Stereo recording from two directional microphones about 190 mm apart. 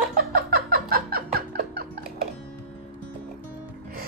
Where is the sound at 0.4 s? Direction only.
50° right (ahead or behind).